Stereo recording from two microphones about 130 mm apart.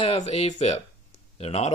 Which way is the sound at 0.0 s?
50° left (ahead or behind).